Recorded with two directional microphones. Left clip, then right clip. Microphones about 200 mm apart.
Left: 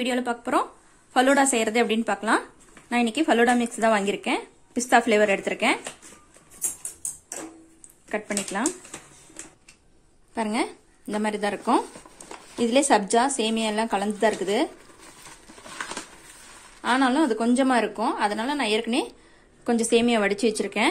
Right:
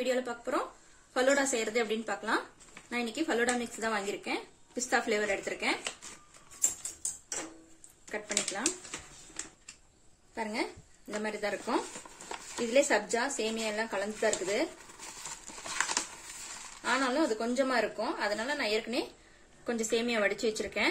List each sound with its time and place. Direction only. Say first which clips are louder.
0.0 s speech: left 6 dB; 40° left (ahead or behind)
8.1 s speech: left 6 dB; 45° left (ahead or behind)
10.3 s speech: left 8 dB; 40° left (ahead or behind)
16.8 s speech: left 8 dB; 45° left (ahead or behind)